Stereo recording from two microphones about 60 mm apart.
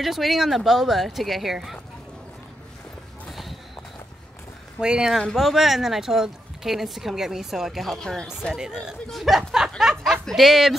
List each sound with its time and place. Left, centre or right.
0.0 s speech: centre
3.3 s walk: centre
4.8 s speech: centre
5.3 s speech: centre
8.5 s speech: centre